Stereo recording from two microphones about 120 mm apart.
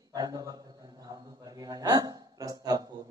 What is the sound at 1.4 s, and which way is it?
A man's voice, 30° right (ahead or behind).